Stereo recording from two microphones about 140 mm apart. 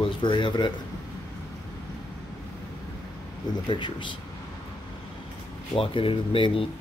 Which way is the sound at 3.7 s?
35° left (ahead or behind).